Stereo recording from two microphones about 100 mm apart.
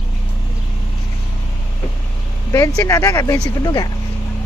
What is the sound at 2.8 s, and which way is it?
Speech, 30° left (ahead or behind).